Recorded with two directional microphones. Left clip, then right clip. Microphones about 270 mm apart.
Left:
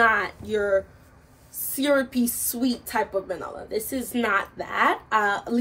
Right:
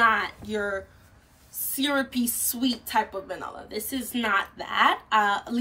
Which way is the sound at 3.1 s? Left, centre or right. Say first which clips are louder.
Left 5 dB; right.